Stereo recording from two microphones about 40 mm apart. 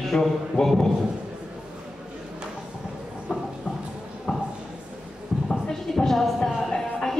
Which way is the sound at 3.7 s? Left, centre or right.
Centre.